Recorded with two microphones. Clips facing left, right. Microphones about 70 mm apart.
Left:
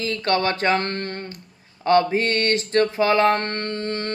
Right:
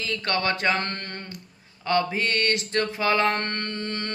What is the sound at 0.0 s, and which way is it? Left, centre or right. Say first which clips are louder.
Mantra: left 5 dB; left.